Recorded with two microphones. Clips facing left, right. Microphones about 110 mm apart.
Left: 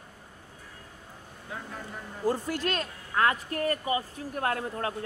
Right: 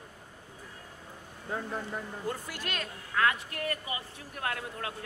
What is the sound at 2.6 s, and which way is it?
Speech, 35° left (ahead or behind).